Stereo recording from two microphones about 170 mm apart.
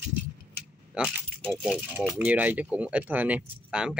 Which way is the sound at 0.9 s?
Centre (ahead or behind).